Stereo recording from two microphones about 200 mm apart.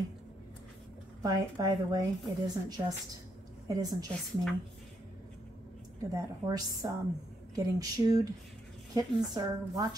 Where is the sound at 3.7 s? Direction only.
20° right (ahead or behind).